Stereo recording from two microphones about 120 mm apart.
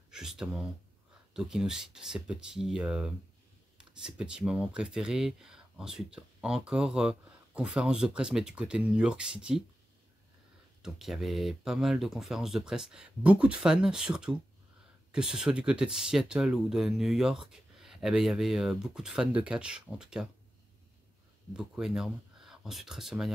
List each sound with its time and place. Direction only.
0.1 s speech: 5° right (ahead or behind)
10.8 s speech: centre (ahead or behind)
21.5 s speech: 5° right (ahead or behind)